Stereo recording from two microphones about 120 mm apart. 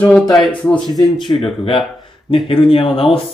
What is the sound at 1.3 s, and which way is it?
Speech, 35° left (ahead or behind).